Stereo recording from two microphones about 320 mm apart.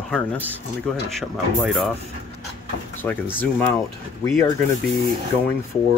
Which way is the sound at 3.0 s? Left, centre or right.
Centre.